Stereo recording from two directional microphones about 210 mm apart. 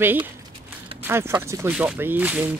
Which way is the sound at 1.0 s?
10° right (ahead or behind).